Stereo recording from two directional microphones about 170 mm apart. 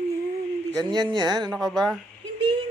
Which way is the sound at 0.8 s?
25° right (ahead or behind).